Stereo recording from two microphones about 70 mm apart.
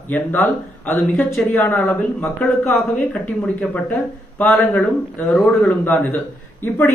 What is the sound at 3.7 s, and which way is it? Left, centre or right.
Speech, left.